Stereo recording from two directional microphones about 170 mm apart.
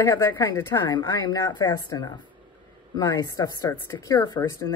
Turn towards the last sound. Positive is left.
turn(degrees=25)  # may be behind; listen again after turning